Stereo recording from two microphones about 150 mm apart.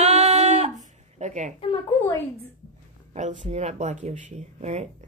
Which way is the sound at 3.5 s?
50° right (ahead or behind).